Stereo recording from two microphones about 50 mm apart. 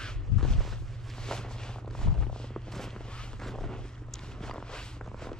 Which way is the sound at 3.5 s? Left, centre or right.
Centre.